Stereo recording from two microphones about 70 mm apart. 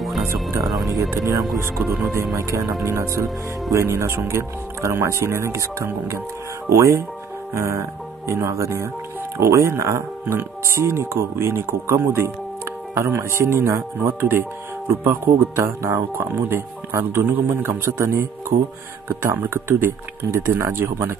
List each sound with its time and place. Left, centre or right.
1.1 s speech: right
17.6 s speech: right